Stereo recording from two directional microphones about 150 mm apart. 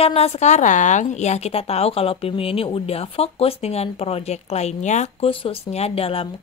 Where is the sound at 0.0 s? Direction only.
45° left (ahead or behind).